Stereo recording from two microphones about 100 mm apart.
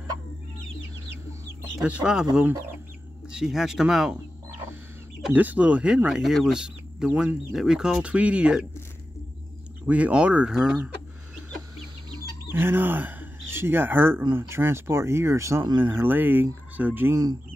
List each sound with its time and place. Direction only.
1.8 s speech: 10° right (ahead or behind)
3.3 s speech: 5° right (ahead or behind)
5.3 s speech: 15° right (ahead or behind)
9.8 s speech: 15° right (ahead or behind)
12.5 s speech: 20° right (ahead or behind)